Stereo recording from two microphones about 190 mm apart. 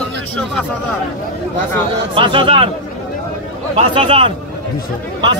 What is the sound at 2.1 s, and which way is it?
Speech, 25° right (ahead or behind).